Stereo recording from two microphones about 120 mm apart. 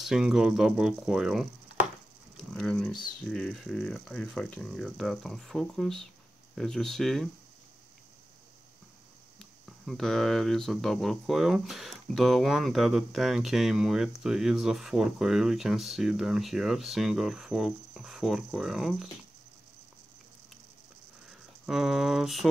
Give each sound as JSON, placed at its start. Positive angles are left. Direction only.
{"t": 0.0, "sound": "speech", "side_deg": -5}
{"t": 2.5, "sound": "speech", "side_deg": 5}
{"t": 9.4, "sound": "speech", "side_deg": 0}
{"t": 21.3, "sound": "speech", "side_deg": 0}